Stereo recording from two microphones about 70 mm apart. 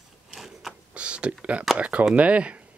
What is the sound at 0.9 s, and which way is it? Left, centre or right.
Speech, centre.